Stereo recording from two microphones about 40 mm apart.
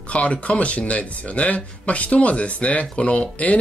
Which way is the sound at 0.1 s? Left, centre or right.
Left.